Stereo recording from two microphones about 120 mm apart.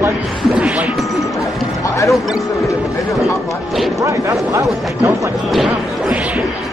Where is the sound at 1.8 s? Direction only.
25° left (ahead or behind).